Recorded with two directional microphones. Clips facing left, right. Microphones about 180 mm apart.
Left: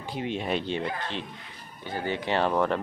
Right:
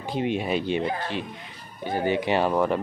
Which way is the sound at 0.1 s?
20° right (ahead or behind).